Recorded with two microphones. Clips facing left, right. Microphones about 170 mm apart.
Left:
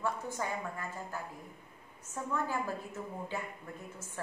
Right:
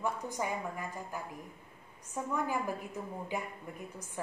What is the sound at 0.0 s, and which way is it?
A woman's voice, 15° right (ahead or behind).